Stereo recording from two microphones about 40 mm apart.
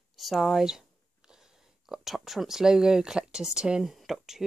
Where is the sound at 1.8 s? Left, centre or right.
Centre; by 3.8 s right.